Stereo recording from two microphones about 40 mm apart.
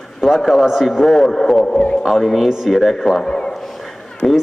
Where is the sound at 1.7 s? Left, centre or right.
Left.